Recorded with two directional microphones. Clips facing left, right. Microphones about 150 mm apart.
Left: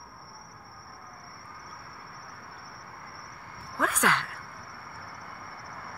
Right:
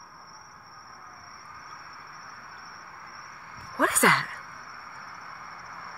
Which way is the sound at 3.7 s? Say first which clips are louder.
Right 3 dB; 5° right (ahead or behind).